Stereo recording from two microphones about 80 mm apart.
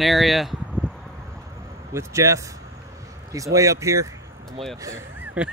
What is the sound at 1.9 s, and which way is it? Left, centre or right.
Speech, right.